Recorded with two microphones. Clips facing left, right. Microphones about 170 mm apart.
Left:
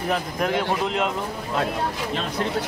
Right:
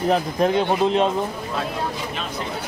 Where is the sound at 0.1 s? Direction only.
25° right (ahead or behind).